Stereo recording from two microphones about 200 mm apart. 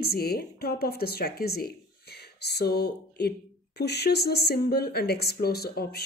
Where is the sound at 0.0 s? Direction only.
50° left (ahead or behind).